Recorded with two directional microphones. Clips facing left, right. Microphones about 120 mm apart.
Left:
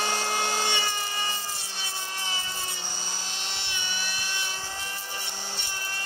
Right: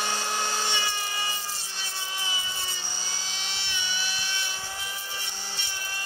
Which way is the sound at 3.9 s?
50° left (ahead or behind).